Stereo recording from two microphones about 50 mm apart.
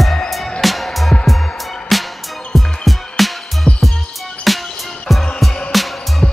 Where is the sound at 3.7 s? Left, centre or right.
Left.